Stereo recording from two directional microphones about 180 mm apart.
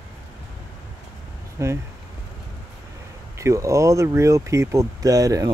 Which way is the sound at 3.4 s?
15° right (ahead or behind).